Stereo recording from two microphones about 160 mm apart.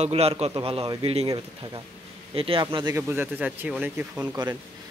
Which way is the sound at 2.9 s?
10° right (ahead or behind).